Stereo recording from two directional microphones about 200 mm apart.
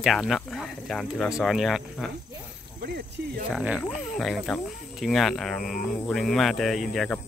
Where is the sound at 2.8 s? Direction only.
50° right (ahead or behind).